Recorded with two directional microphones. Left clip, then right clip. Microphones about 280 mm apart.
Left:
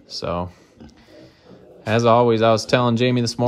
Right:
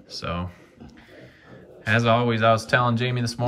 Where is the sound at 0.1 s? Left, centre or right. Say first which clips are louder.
Left 6 dB; centre.